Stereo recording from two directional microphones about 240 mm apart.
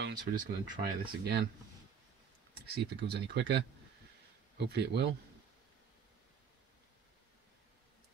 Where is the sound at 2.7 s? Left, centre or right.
Right.